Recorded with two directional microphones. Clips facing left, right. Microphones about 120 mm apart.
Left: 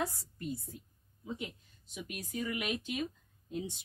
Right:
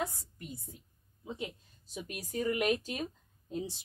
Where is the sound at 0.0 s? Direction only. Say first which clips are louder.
Left 1 dB; 20° right (ahead or behind).